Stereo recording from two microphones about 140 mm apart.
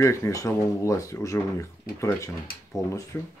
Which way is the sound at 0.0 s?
20° left (ahead or behind).